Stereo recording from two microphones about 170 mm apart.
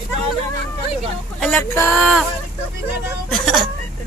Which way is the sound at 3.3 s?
Centre (ahead or behind).